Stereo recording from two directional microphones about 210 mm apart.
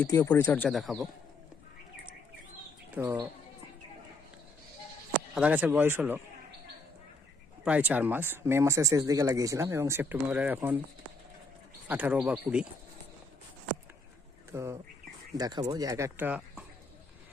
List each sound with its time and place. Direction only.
0.0 s speech: 10° left (ahead or behind)
3.0 s speech: 10° right (ahead or behind)
5.3 s speech: 5° right (ahead or behind)
7.6 s speech: 5° right (ahead or behind)
11.9 s speech: 5° right (ahead or behind)
14.5 s speech: 10° right (ahead or behind)